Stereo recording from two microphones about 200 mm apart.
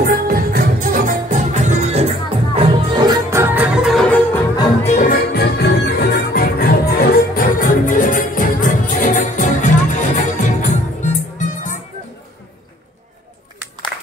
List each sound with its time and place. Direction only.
0.0 s music: 45° right (ahead or behind)
3.1 s music: 15° right (ahead or behind)
3.8 s music: 5° left (ahead or behind)
4.8 s music: 40° left (ahead or behind)